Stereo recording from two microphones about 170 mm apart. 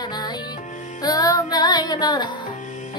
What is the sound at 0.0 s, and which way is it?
Music, 25° left (ahead or behind).